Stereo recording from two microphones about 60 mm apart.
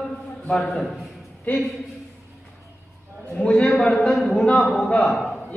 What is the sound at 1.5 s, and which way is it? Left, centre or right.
Speech, left.